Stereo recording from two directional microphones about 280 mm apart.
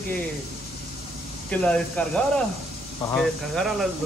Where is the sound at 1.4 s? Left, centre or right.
Centre.